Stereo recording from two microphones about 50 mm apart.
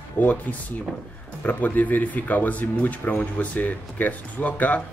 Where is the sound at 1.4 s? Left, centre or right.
Left.